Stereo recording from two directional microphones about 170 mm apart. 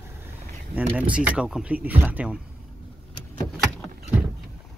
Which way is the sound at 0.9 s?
10° right (ahead or behind).